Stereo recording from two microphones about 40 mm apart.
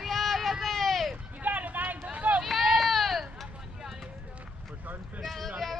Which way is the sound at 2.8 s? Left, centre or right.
Centre.